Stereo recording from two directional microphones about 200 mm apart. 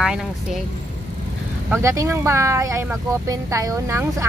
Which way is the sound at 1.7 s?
15° right (ahead or behind).